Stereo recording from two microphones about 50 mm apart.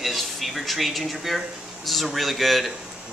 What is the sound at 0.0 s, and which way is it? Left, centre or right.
Speech, centre.